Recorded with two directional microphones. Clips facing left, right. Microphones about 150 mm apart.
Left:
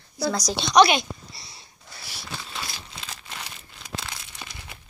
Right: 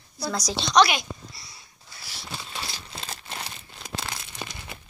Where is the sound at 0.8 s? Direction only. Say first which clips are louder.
Left 4 dB; 25° left (ahead or behind).